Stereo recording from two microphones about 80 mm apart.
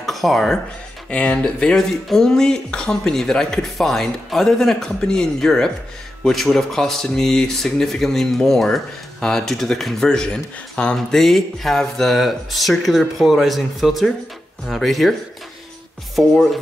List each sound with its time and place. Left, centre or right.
0.0 s speech: centre
1.1 s speech: centre